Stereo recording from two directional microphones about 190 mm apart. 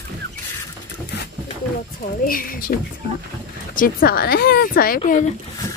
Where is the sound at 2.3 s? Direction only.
50° left (ahead or behind).